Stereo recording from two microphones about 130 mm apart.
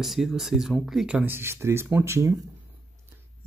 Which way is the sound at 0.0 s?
Centre (ahead or behind).